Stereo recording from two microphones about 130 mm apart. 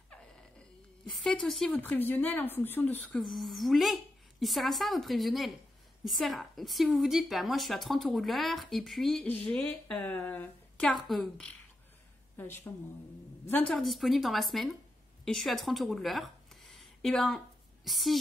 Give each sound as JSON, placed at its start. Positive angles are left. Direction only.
{"t": 1.1, "sound": "a woman's voice", "side_deg": 5}
{"t": 12.4, "sound": "a woman's voice", "side_deg": 15}
{"t": 13.8, "sound": "a woman's voice", "side_deg": 0}